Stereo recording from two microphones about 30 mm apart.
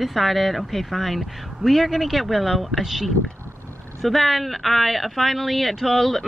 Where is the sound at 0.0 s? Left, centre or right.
Centre.